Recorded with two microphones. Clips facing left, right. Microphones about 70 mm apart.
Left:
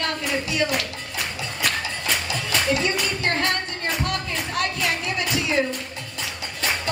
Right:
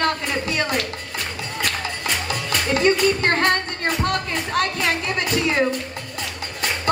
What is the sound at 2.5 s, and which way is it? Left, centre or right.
Speech, right.